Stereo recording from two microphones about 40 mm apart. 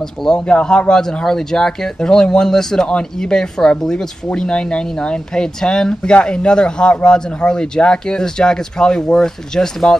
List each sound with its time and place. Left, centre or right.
0.5 s speech: left